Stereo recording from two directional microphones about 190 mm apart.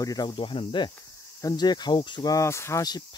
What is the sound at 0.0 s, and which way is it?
Speech, 20° left (ahead or behind).